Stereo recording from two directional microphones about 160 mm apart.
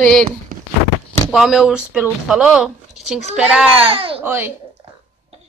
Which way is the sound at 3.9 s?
35° right (ahead or behind).